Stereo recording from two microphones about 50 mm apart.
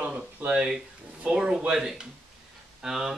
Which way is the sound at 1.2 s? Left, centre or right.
Centre.